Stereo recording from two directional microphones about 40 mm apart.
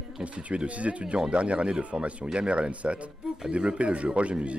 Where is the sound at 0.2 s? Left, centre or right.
Right.